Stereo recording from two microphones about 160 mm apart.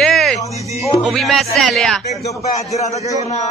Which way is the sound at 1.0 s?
Centre (ahead or behind).